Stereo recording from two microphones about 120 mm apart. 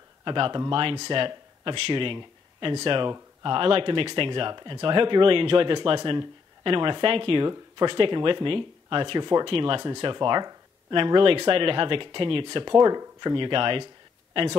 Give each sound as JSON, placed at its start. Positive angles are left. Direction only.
{"t": 0.2, "sound": "speech", "side_deg": -40}